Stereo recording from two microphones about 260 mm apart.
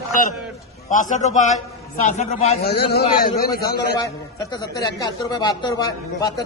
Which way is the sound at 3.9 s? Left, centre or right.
Centre.